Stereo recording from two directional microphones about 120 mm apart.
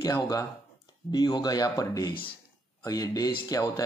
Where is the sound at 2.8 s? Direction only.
30° left (ahead or behind).